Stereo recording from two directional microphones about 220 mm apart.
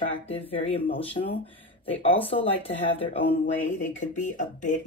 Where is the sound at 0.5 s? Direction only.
25° left (ahead or behind).